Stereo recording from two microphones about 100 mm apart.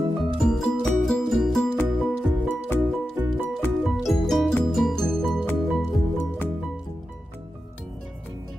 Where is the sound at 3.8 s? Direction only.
Centre (ahead or behind).